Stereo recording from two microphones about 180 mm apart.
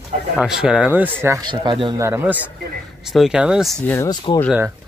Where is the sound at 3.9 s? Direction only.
15° left (ahead or behind).